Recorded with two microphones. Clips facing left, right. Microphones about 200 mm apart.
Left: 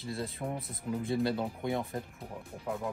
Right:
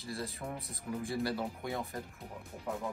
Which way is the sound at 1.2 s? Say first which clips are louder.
Left 4 dB; 20° left (ahead or behind).